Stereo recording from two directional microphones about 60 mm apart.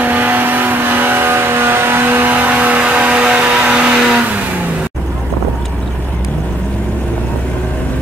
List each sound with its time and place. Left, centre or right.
0.0 s vehicle: right